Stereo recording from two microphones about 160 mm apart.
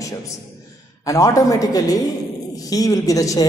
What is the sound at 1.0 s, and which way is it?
A woman's voice, 20° left (ahead or behind).